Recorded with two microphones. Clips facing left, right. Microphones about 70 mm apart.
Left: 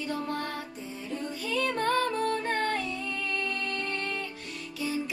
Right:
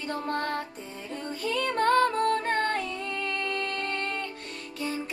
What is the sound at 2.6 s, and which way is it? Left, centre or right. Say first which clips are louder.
Music: right 2 dB; right.